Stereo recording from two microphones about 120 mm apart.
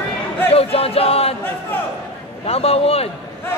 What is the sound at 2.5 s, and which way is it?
Choir, 55° left (ahead or behind).